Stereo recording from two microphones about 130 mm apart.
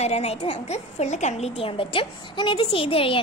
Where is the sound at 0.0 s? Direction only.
55° left (ahead or behind).